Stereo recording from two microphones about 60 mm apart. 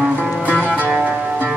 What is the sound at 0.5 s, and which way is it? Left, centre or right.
Music, right.